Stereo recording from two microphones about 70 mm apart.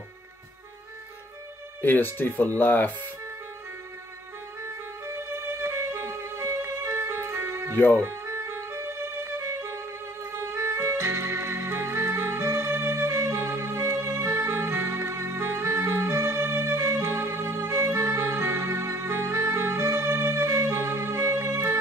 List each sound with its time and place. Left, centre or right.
1.8 s speech: left
5.0 s music: right
7.7 s speech: left
8.1 s music: right
17.8 s music: right
18.1 s music: right